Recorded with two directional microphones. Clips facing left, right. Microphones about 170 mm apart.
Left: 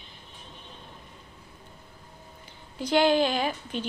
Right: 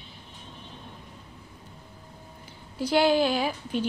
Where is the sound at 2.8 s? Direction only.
10° right (ahead or behind).